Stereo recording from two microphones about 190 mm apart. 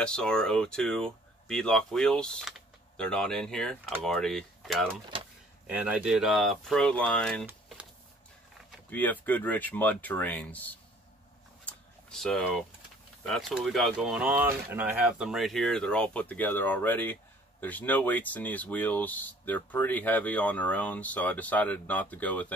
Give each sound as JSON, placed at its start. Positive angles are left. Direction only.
{"t": 0.0, "sound": "speech", "side_deg": 5}
{"t": 5.1, "sound": "door", "side_deg": -25}
{"t": 5.7, "sound": "speech", "side_deg": -5}
{"t": 8.9, "sound": "speech", "side_deg": 10}
{"t": 11.6, "sound": "a sound", "side_deg": 5}
{"t": 13.2, "sound": "speech", "side_deg": 0}